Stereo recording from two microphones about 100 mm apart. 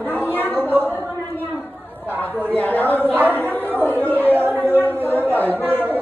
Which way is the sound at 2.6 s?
20° left (ahead or behind).